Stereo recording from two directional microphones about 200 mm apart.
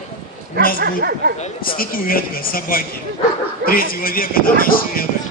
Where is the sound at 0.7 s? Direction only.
50° right (ahead or behind).